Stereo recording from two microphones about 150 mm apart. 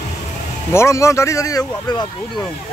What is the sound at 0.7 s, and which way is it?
Speech, 20° left (ahead or behind).